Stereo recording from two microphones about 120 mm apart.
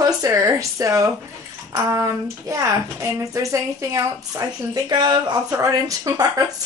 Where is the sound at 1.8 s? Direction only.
25° right (ahead or behind).